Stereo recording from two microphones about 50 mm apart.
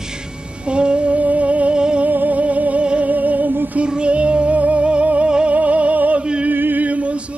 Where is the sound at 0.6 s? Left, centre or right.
Right.